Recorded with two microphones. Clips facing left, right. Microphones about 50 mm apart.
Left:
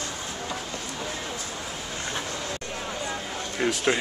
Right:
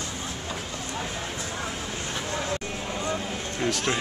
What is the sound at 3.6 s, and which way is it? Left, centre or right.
Speech, centre.